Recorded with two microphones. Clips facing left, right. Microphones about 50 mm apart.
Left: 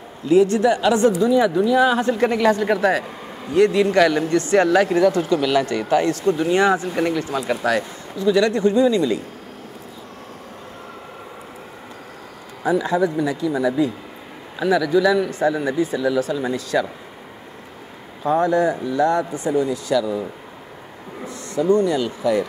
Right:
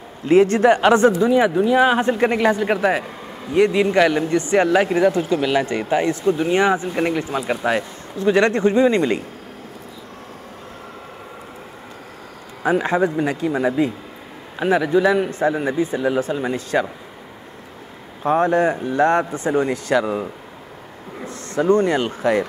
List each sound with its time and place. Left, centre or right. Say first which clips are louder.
0.3 s a man's voice: right 2 dB; right
8.2 s a man's voice: right 1 dB; right
12.6 s a man's voice: right 1 dB; right
18.2 s speech: right 1 dB; right
21.3 s speech: right 1 dB; right